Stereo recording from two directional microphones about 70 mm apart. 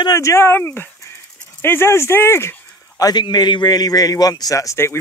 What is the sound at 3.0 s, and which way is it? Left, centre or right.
A man's voice, left.